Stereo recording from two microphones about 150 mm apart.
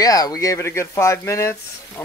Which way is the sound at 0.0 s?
25° left (ahead or behind).